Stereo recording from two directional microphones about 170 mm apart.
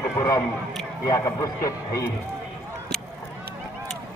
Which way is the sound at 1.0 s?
20° left (ahead or behind).